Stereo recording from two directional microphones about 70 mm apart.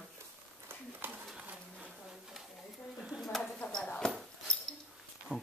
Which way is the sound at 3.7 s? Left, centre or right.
Centre.